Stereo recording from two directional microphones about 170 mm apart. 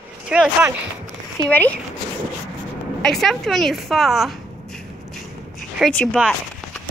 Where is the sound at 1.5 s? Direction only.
10° left (ahead or behind).